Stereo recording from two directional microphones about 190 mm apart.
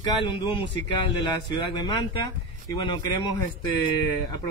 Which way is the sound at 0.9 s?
25° left (ahead or behind).